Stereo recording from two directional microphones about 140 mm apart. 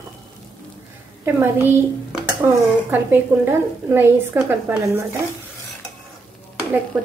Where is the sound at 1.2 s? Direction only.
15° right (ahead or behind).